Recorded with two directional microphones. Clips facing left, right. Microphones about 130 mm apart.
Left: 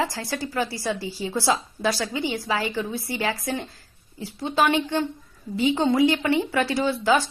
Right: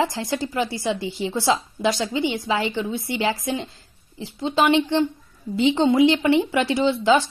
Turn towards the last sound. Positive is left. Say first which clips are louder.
# right 3 dB
turn(degrees=-20)  # may be behind; listen again after turning